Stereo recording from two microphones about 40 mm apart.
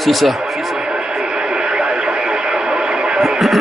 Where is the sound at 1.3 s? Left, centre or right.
Right.